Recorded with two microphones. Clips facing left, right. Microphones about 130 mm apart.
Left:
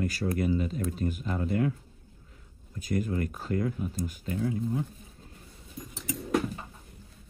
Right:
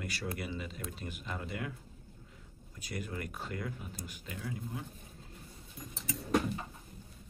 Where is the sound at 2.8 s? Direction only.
45° left (ahead or behind).